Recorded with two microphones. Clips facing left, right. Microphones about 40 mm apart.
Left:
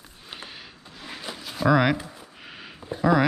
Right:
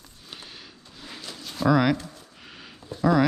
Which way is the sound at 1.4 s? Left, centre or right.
Centre.